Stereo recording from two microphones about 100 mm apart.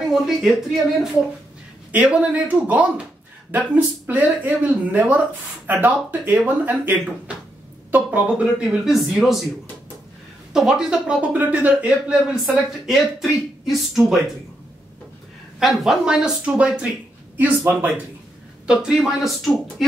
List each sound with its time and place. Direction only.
0.0 s speech: 5° right (ahead or behind)
1.9 s speech: 15° right (ahead or behind)
10.5 s speech: 5° right (ahead or behind)
15.6 s speech: 5° right (ahead or behind)
18.7 s speech: 5° right (ahead or behind)